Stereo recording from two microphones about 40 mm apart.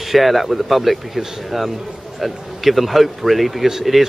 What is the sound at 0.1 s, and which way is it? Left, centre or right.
Speech, centre.